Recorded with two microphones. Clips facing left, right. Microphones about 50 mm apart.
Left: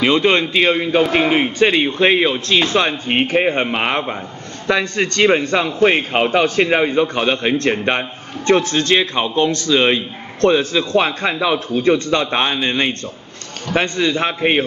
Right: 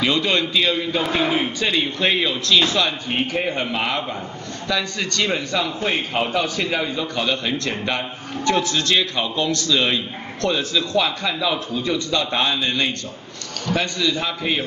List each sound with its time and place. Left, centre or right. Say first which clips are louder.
0.0 s a man's voice: left 5 dB; left